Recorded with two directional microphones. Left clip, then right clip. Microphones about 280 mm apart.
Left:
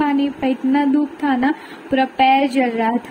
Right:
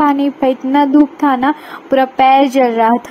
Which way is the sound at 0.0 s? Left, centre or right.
Right.